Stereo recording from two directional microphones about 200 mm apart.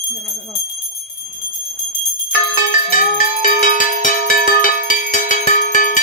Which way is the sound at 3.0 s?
45° left (ahead or behind).